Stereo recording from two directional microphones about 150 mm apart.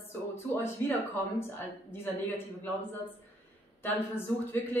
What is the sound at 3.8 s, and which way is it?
A woman's voice, 15° left (ahead or behind).